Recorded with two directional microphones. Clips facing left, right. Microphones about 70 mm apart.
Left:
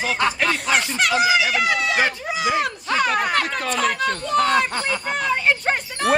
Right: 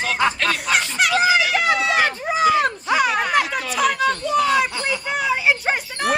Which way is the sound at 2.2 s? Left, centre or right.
Right.